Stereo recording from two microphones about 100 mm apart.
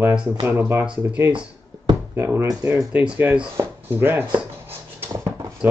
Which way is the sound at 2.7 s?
10° right (ahead or behind).